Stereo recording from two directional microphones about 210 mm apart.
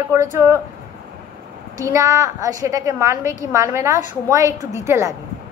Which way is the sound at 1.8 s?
15° right (ahead or behind).